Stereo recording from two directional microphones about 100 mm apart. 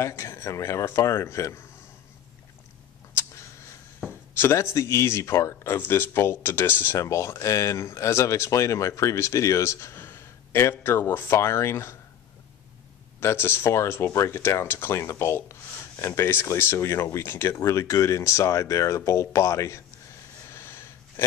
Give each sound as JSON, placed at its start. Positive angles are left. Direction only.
{"t": 0.0, "sound": "speech", "side_deg": 25}
{"t": 4.1, "sound": "speech", "side_deg": 25}
{"t": 13.2, "sound": "speech", "side_deg": 25}
{"t": 20.4, "sound": "a sound", "side_deg": 25}